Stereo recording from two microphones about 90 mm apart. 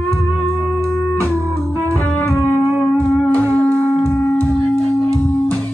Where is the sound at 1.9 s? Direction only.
20° left (ahead or behind).